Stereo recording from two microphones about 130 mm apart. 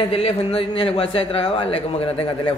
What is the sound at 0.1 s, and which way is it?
A man's voice, 50° left (ahead or behind).